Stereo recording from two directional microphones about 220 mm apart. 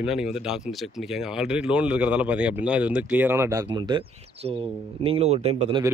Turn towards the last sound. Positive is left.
turn(degrees=-25)  # may be behind; listen again after turning